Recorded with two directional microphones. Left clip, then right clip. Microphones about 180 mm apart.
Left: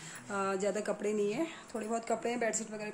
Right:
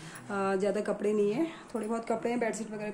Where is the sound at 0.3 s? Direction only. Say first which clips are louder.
Right 3 dB; 5° left (ahead or behind).